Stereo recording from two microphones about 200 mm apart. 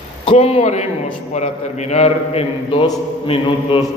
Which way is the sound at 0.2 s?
30° left (ahead or behind).